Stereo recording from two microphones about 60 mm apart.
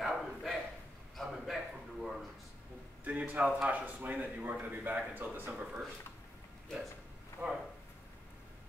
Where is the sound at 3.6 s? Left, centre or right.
Right.